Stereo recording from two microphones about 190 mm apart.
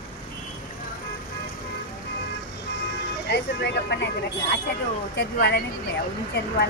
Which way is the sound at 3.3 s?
60° left (ahead or behind).